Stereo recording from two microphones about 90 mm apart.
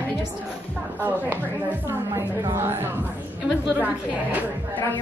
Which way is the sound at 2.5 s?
25° right (ahead or behind).